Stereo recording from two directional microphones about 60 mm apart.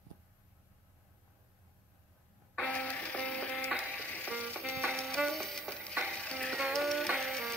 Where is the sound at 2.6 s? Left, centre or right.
Left.